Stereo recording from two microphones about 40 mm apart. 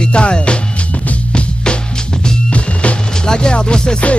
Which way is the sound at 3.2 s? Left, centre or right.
Centre.